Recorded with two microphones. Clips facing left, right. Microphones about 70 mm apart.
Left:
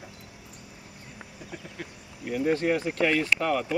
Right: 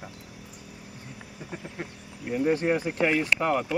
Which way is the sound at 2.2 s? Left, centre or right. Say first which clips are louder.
Right 1 dB; centre.